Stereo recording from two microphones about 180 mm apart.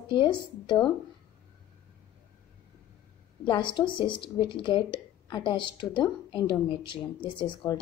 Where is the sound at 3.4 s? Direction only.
25° left (ahead or behind).